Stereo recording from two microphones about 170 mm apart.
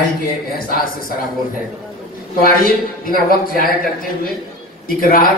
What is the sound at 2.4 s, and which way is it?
A man's voice, 60° left (ahead or behind).